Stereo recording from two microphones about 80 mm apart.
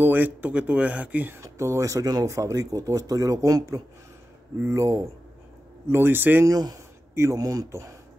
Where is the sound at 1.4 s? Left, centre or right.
Right.